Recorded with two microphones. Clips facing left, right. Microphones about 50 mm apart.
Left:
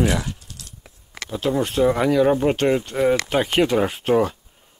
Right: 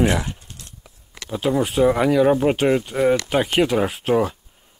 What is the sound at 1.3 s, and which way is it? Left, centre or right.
Speech, centre.